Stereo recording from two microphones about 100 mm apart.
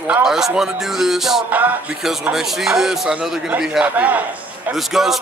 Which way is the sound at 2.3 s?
5° right (ahead or behind).